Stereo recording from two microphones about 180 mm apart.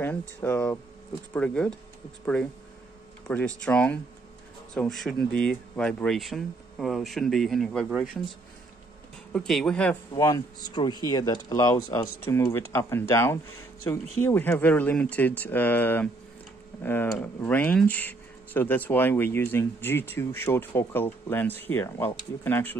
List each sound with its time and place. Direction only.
0.4 s speech: 10° left (ahead or behind)
3.3 s speech: 5° left (ahead or behind)
9.3 s speech: 5° left (ahead or behind)
10.1 s speech: 20° left (ahead or behind)